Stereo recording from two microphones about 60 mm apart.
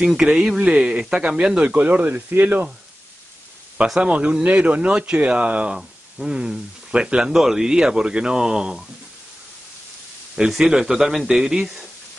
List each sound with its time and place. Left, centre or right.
0.2 s speech: centre
0.7 s speech: centre
3.7 s speech: centre
5.8 s speech: centre
10.3 s speech: centre